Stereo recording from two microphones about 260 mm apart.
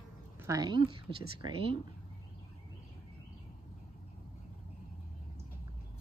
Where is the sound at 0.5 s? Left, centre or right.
Centre.